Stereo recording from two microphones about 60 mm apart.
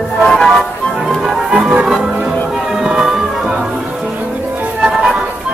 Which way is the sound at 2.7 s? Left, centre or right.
Centre.